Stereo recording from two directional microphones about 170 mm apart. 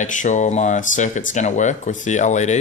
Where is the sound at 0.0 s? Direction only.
45° left (ahead or behind).